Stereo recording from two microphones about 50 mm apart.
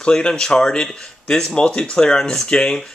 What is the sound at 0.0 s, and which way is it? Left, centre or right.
Speech, centre.